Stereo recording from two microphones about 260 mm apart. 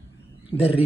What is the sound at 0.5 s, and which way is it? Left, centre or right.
Speech, left.